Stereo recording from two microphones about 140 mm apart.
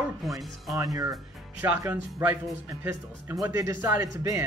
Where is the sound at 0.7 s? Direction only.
25° right (ahead or behind).